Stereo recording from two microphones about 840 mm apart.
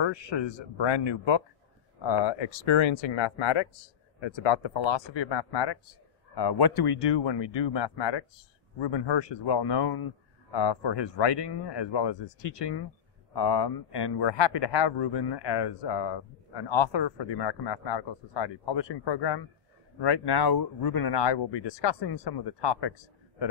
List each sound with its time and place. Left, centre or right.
0.0 s speech: left